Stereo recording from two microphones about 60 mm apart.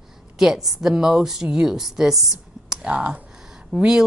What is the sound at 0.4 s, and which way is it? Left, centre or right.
A woman's voice, centre.